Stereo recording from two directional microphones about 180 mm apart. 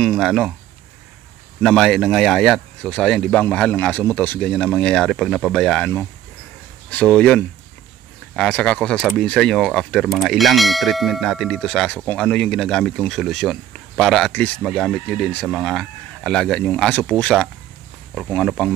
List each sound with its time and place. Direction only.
0.0 s speech: centre (ahead or behind)
1.6 s speech: centre (ahead or behind)